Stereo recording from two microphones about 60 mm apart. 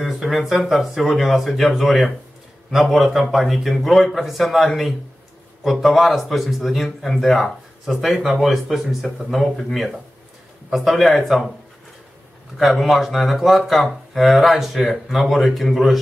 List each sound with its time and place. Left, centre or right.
0.0 s speech: centre
12.5 s speech: centre